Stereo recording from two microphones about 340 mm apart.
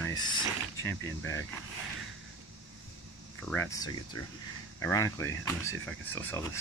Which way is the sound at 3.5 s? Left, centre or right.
Centre.